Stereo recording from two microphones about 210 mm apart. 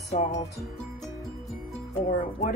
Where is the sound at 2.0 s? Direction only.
40° left (ahead or behind).